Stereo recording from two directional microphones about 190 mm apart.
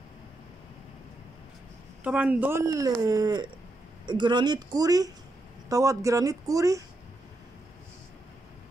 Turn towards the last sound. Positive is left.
turn(degrees=-15)  # may be behind; listen again after turning